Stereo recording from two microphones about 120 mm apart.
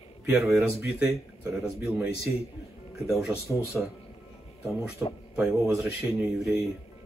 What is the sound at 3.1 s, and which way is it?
Speech, 5° right (ahead or behind).